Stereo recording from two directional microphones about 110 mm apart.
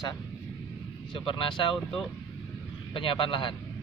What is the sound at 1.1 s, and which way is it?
Speech, 50° left (ahead or behind).